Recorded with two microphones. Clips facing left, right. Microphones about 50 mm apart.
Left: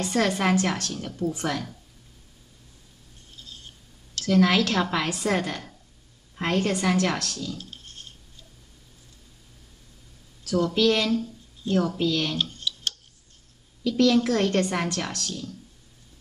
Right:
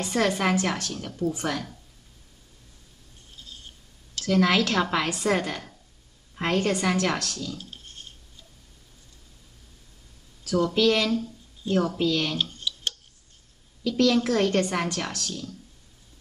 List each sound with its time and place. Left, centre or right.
0.0 s a woman's voice: centre
4.2 s a woman's voice: centre
10.5 s a woman's voice: centre
12.5 s tick-tock: centre
13.8 s a woman's voice: centre